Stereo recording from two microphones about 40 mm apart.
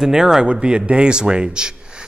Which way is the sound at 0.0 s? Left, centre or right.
Centre.